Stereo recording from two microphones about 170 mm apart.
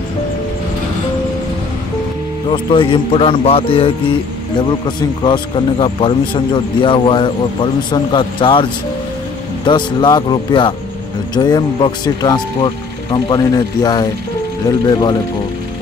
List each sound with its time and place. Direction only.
2.5 s a man's voice: 30° left (ahead or behind)
9.7 s a man's voice: 25° left (ahead or behind)